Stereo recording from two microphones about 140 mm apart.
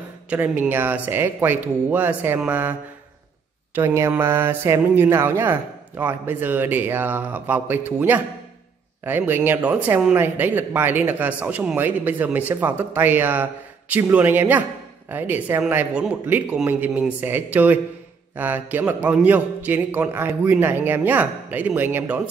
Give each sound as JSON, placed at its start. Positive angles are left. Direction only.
{"t": 0.3, "sound": "speech", "side_deg": -15}
{"t": 3.7, "sound": "speech", "side_deg": -15}